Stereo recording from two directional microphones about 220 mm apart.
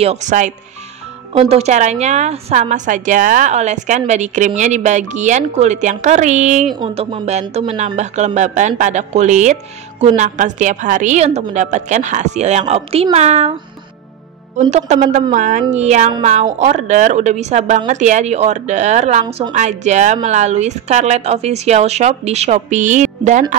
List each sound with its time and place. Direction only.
0.0 s speech: 30° right (ahead or behind)
14.7 s speech: 30° right (ahead or behind)